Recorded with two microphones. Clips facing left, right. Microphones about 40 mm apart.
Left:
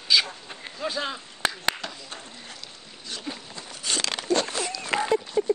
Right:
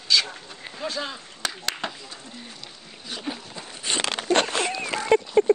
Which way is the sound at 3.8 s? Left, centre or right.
Right.